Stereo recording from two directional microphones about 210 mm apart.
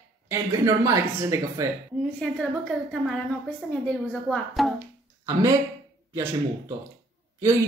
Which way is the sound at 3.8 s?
Centre (ahead or behind).